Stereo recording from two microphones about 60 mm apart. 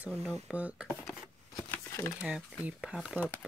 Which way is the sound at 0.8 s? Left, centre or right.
Centre.